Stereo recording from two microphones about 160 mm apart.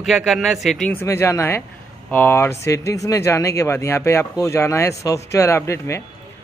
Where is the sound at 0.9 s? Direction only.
15° left (ahead or behind).